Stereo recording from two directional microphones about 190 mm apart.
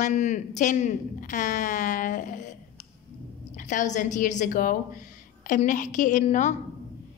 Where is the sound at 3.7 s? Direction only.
40° left (ahead or behind).